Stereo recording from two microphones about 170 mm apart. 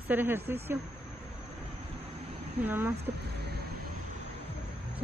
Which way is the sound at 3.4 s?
70° right (ahead or behind).